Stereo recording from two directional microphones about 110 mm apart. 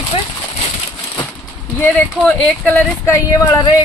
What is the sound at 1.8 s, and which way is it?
Speech, 15° left (ahead or behind).